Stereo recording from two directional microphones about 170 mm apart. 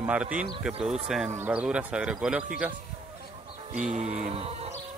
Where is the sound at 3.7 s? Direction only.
45° right (ahead or behind).